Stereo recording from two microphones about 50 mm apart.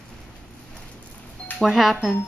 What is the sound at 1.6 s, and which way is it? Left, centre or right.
Speech, centre.